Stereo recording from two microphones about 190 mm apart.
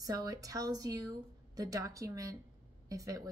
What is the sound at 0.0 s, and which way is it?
A woman's voice, 20° right (ahead or behind).